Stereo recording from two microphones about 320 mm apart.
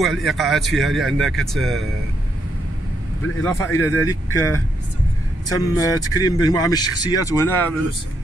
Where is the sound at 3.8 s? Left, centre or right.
Centre.